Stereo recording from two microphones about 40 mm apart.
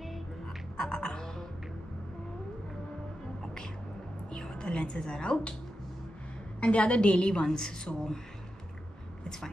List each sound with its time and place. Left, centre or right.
0.7 s music: left
4.3 s a woman's voice: left
6.6 s a woman's voice: left; by 8.2 s centre